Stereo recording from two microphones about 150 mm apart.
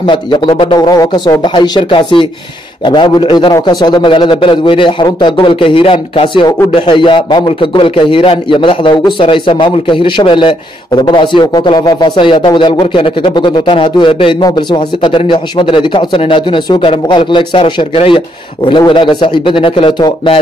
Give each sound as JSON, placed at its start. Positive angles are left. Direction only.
{"t": 0.0, "sound": "a man's voice", "side_deg": 30}